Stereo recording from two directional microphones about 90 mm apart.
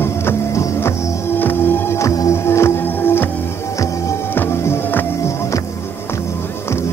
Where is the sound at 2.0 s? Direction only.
35° left (ahead or behind).